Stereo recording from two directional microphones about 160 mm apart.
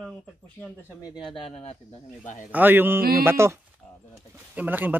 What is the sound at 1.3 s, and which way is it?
A man's voice, 40° left (ahead or behind).